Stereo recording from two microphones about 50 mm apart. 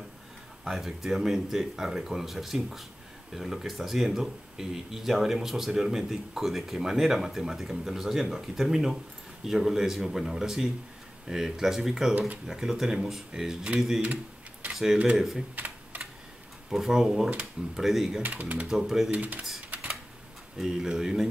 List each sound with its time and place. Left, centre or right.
0.7 s speech: centre
15.5 s typing: right
16.7 s speech: centre
18.3 s speech: right
18.7 s speech: centre
19.0 s speech: right
19.7 s typewriter: right
20.5 s speech: centre